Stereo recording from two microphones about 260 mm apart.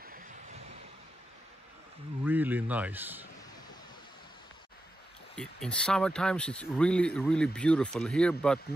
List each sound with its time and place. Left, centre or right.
0.0 s vehicle: right
2.2 s speech: centre
5.3 s speech: centre